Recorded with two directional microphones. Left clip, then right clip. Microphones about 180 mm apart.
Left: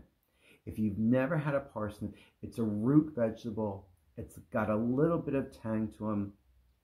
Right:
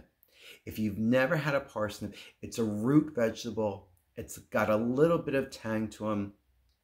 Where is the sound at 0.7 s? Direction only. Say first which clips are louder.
Right 3 dB; 10° right (ahead or behind).